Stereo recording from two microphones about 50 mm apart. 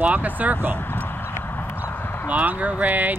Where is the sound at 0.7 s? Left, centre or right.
Left.